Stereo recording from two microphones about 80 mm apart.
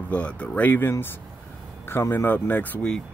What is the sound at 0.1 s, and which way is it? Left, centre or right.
Speech, centre.